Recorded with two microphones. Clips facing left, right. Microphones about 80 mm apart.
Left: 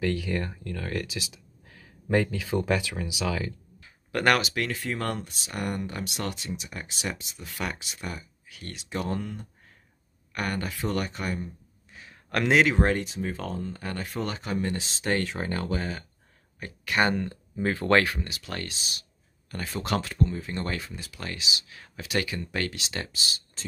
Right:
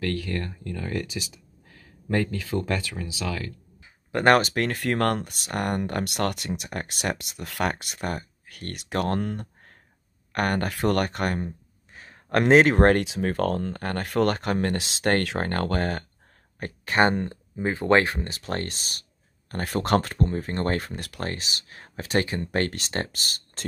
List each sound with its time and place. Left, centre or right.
0.0 s speech: centre
0.7 s speech: centre
3.8 s a sound: right
4.4 s speech: right
11.9 s speech: right
13.0 s speech: right
16.5 s speech: right
18.1 s speech: right
21.2 s speech: right